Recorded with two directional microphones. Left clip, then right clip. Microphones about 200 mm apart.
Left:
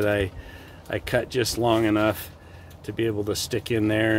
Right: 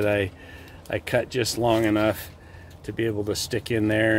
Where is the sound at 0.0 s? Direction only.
5° left (ahead or behind).